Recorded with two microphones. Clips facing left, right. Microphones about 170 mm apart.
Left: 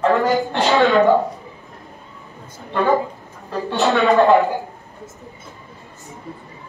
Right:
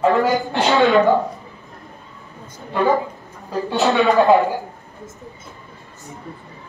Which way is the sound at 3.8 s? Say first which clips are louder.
Left 1 dB; centre (ahead or behind).